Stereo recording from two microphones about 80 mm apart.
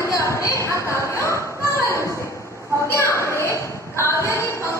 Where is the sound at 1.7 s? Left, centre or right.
Left.